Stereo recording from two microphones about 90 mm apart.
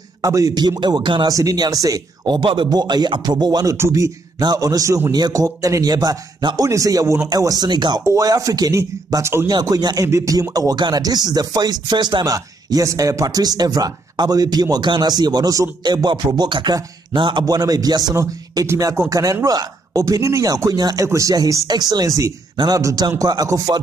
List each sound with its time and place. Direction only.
0.2 s speech: 40° right (ahead or behind); by 1.3 s 60° right (ahead or behind)
1.3 s speech: 40° right (ahead or behind)
2.2 s speech: 60° right (ahead or behind)
3.6 s speech: 35° right (ahead or behind)
4.4 s speech: 45° right (ahead or behind)
8.0 s speech: 40° right (ahead or behind)
9.2 s speech: 30° right (ahead or behind)
9.5 s speech: 50° right (ahead or behind)
15.8 s music: 50° right (ahead or behind)
16.7 s a man's voice: 60° right (ahead or behind); by 23.8 s 40° right (ahead or behind)